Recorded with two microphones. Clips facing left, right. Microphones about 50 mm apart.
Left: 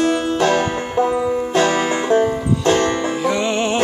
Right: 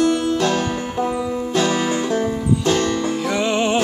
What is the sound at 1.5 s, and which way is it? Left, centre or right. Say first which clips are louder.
Music: left 1 dB; left.